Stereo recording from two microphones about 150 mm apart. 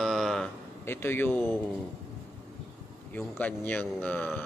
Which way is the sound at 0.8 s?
15° left (ahead or behind).